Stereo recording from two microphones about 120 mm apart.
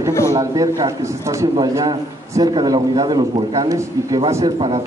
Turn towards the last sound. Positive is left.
turn(degrees=-45)  # may be behind; listen again after turning